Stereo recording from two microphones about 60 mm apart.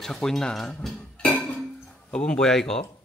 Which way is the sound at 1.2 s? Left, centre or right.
Left.